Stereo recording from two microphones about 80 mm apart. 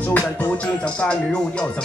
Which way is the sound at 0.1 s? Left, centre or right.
Left.